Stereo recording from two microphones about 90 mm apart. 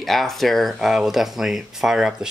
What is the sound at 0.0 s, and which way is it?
Speech, centre (ahead or behind).